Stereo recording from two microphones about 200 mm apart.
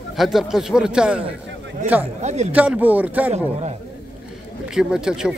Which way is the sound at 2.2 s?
35° right (ahead or behind).